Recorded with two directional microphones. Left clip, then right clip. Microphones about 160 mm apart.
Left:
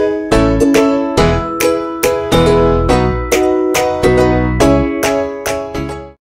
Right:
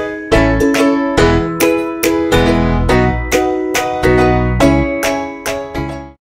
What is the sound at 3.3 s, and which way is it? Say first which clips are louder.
Music: left 2 dB; centre (ahead or behind).